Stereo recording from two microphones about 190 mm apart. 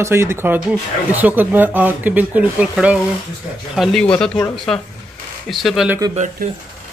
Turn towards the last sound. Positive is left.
turn(degrees=-40)  # may be behind; listen again after turning